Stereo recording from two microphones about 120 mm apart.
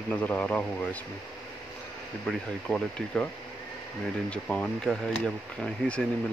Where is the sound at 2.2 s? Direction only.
10° left (ahead or behind).